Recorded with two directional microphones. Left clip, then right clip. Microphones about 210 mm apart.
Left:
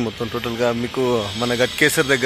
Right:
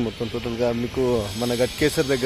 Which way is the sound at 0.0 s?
20° left (ahead or behind).